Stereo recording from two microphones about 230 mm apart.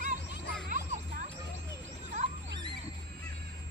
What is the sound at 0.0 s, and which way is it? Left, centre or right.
Music, right.